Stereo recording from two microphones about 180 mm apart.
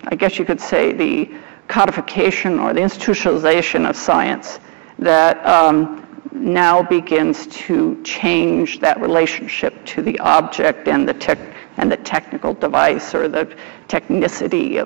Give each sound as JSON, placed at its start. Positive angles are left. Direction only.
{"t": 0.0, "sound": "a man's voice", "side_deg": -10}
{"t": 12.4, "sound": "a man's voice", "side_deg": -25}
{"t": 12.6, "sound": "a man's voice", "side_deg": -10}